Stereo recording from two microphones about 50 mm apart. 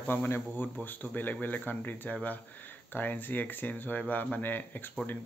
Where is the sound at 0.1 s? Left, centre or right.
Left.